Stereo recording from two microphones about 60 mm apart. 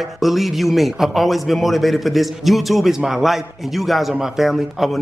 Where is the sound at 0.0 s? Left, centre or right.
Centre.